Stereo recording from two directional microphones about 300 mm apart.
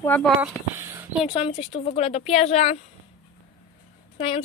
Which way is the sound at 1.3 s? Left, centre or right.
Centre.